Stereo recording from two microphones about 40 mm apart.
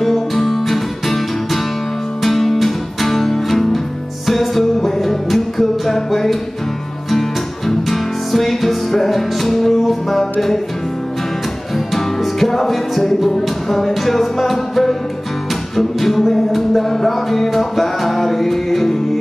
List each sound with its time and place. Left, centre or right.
0.0 s music: centre
11.9 s music: centre